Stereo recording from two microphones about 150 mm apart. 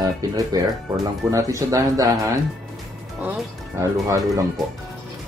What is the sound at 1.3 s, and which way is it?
Speech, 20° right (ahead or behind).